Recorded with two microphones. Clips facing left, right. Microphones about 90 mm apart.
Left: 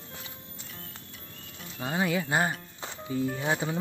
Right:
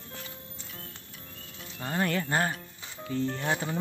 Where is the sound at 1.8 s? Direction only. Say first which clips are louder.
Left 1 dB; 10° left (ahead or behind).